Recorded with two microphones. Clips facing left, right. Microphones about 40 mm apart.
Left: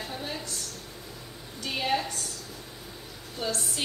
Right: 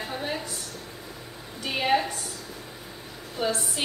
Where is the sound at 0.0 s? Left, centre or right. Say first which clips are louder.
Right 4 dB; centre.